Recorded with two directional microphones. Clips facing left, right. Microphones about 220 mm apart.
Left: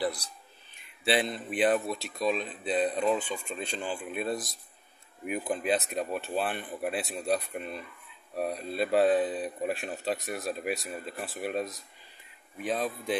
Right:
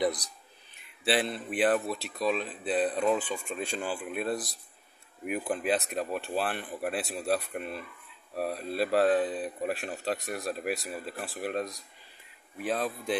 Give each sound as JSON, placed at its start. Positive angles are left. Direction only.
{"t": 0.0, "sound": "speech", "side_deg": -20}
{"t": 1.0, "sound": "speech", "side_deg": 0}